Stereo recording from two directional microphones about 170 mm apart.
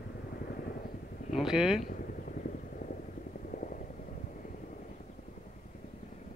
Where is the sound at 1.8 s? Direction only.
55° left (ahead or behind).